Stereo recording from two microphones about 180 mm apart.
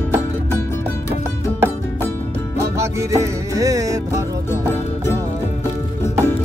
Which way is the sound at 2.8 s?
15° right (ahead or behind).